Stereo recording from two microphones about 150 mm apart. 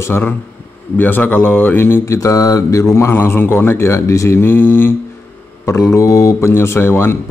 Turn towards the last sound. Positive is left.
turn(degrees=15)  # may be behind; listen again after turning